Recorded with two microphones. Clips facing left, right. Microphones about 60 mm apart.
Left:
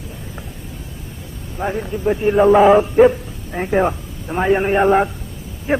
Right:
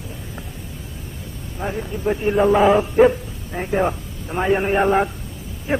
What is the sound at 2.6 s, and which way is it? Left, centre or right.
Speech, left.